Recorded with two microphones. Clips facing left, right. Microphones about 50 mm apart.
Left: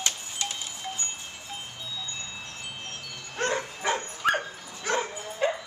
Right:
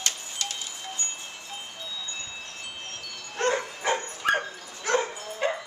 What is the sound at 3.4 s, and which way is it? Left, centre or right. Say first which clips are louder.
Dog: right 2 dB; centre.